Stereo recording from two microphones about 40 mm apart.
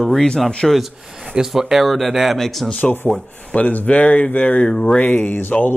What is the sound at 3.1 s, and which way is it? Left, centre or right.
Speech, left.